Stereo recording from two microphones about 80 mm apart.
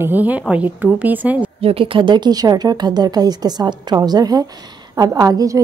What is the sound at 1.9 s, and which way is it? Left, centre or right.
A woman's voice, right.